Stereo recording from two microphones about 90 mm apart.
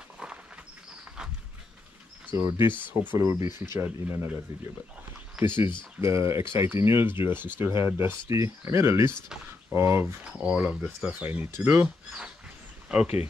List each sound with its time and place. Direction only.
2.3 s speech: 25° right (ahead or behind)
3.2 s speech: 35° right (ahead or behind)
5.4 s speech: 5° right (ahead or behind)
5.9 s speech: 35° right (ahead or behind)
10.3 s speech: 10° right (ahead or behind)
11.2 s speech: 25° right (ahead or behind)
12.8 s a sound: 10° right (ahead or behind)